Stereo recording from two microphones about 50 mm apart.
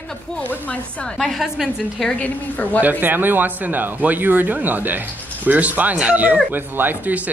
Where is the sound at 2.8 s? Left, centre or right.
Right.